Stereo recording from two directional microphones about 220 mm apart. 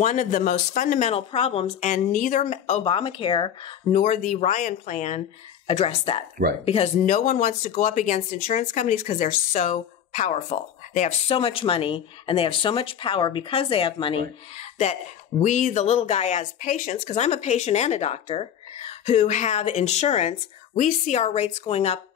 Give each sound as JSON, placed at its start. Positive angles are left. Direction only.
{"t": 0.0, "sound": "speech", "side_deg": 35}
{"t": 3.9, "sound": "speech", "side_deg": 35}